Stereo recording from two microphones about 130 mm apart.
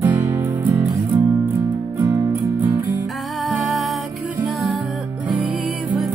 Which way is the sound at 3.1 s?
Centre (ahead or behind).